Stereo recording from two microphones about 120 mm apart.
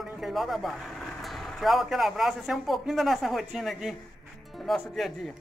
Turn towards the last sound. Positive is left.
turn(degrees=0)  # may be behind; listen again after turning